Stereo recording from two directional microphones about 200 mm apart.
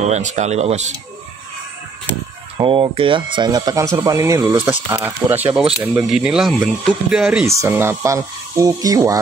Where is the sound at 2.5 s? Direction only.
25° right (ahead or behind).